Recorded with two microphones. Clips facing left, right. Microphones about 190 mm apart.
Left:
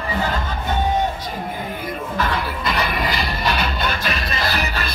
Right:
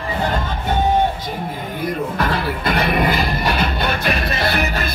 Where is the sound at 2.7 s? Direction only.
55° right (ahead or behind).